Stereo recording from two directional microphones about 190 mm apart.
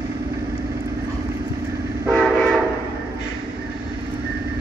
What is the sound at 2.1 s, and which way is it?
Train, centre (ahead or behind).